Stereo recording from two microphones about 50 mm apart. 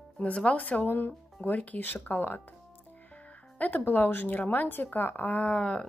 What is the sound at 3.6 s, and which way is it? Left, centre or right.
Speech, left.